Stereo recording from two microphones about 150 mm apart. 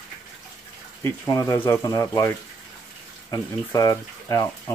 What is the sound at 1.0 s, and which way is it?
Speech, 20° left (ahead or behind).